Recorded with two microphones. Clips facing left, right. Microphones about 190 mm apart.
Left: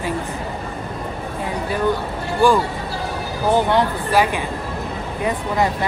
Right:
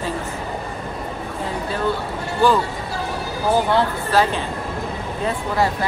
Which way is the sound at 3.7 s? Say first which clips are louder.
Left 1 dB; 15° left (ahead or behind).